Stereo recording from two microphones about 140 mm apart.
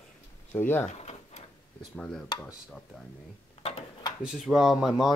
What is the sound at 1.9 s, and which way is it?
Speech, 10° left (ahead or behind).